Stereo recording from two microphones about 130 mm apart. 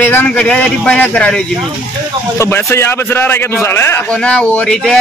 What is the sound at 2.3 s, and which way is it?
A man's voice, 20° left (ahead or behind).